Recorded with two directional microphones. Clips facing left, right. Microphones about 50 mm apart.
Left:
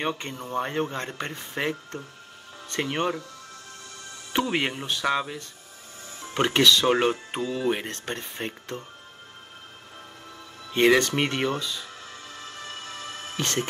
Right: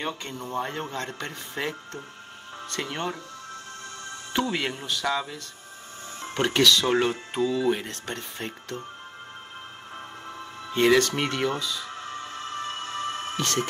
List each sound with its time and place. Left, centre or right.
0.0 s speech: left
4.3 s speech: left
6.3 s speech: left
10.7 s speech: left
11.9 s music: right
13.4 s speech: left